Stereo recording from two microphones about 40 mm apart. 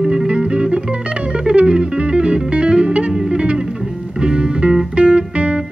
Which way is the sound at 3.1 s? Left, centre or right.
Centre.